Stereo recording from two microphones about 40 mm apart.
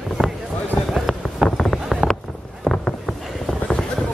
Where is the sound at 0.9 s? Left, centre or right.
Centre.